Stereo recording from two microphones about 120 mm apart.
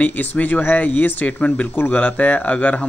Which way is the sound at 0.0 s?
15° left (ahead or behind).